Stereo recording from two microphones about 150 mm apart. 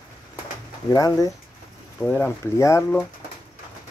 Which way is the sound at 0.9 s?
25° left (ahead or behind).